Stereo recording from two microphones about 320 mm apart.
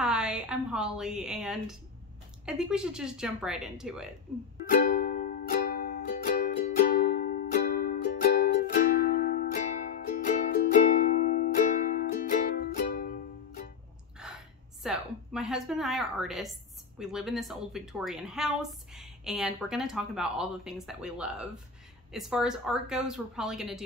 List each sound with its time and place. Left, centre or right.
0.0 s a woman's voice: centre
5.0 s music: left
14.2 s a sound: centre
17.0 s a woman's voice: centre